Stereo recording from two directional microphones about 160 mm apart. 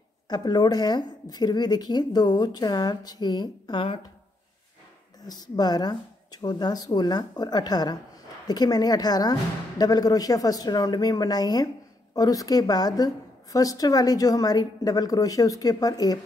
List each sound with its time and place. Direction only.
0.3 s a woman's voice: 25° left (ahead or behind)
5.2 s a woman's voice: 25° left (ahead or behind)